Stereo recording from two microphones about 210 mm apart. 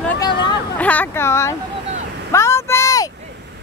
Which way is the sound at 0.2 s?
20° left (ahead or behind).